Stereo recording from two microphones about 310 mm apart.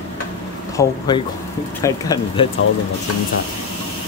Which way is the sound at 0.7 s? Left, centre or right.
Centre.